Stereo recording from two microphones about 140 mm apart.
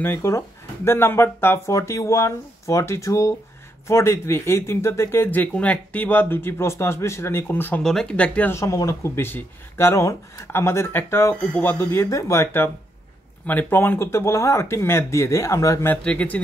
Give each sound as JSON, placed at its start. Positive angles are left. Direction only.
{"t": 0.0, "sound": "speech", "side_deg": 15}
{"t": 7.8, "sound": "speech", "side_deg": 5}